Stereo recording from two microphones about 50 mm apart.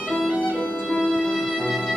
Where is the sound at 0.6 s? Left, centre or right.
Left.